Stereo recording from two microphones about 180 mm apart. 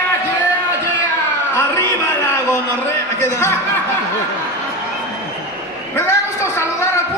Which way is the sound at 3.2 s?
15° left (ahead or behind).